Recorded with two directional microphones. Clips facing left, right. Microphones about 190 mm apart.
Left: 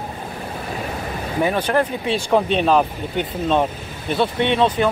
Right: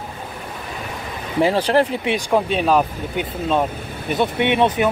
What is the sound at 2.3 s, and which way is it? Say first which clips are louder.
Speech: left 1 dB; 5° right (ahead or behind).